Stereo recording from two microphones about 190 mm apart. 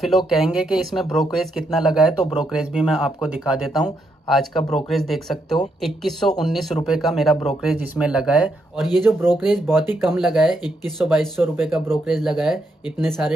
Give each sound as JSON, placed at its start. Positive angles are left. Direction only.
{"t": 0.3, "sound": "speech", "side_deg": 0}
{"t": 9.4, "sound": "speech", "side_deg": 0}